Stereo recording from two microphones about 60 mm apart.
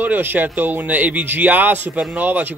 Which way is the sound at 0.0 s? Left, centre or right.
Right.